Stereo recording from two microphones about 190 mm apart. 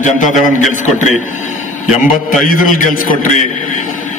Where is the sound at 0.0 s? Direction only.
40° left (ahead or behind).